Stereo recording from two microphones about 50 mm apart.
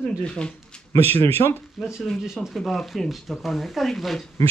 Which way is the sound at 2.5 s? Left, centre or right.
Centre.